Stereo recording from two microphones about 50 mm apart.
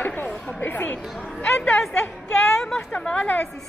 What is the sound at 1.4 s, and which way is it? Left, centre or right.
Speech, centre.